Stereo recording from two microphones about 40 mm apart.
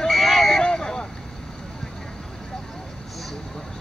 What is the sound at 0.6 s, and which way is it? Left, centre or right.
Vehicle, centre.